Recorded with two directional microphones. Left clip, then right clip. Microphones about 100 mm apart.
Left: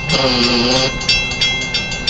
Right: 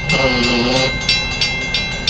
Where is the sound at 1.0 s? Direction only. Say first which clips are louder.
Left 2 dB; 5° left (ahead or behind).